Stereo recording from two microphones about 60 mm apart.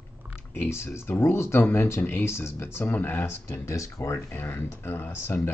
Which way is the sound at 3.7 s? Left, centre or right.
Left.